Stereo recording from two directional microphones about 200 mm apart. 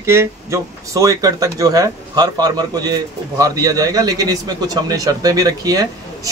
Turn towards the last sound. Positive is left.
turn(degrees=-20)  # may be behind; listen again after turning